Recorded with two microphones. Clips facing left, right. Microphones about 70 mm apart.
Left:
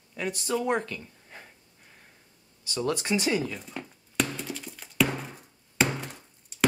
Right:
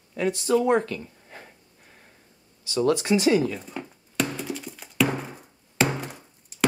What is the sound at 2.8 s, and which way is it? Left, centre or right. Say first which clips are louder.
Speech: right 6 dB; right.